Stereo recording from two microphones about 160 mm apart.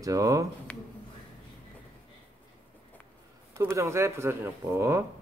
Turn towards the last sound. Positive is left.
turn(degrees=-15)  # may be behind; listen again after turning